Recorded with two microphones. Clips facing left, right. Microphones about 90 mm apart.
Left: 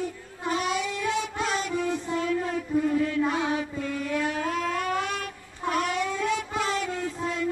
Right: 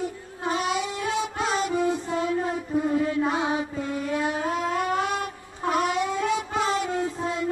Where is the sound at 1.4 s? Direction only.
20° right (ahead or behind).